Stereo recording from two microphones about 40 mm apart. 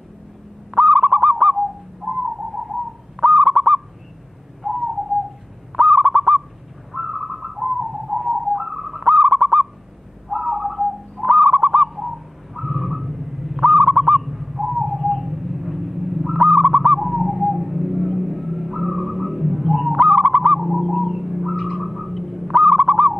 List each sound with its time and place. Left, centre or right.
0.7 s bird: centre
2.0 s bird: right
3.2 s bird: centre
4.6 s bird: centre
5.8 s owl: centre
6.9 s bird: centre
11.2 s bird: centre
16.3 s bird: centre
20.0 s bird: right
20.5 s bird: centre
22.5 s owl: centre